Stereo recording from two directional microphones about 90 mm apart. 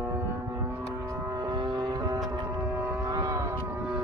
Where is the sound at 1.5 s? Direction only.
55° right (ahead or behind).